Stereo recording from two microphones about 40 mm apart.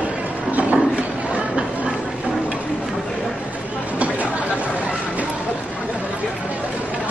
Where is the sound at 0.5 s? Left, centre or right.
Right.